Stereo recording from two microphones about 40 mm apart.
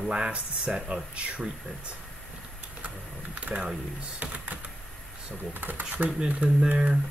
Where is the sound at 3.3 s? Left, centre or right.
Right.